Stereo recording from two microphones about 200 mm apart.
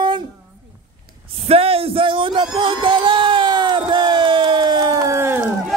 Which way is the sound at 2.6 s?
25° right (ahead or behind).